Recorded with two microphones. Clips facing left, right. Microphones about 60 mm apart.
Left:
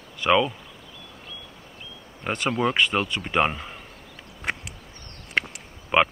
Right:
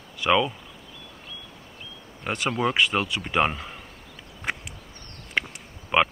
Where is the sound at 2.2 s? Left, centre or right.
Centre.